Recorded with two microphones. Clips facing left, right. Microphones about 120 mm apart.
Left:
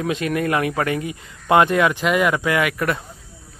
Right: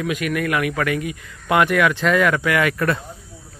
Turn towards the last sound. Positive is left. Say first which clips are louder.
# right 1 dB
turn(degrees=10)  # may be behind; listen again after turning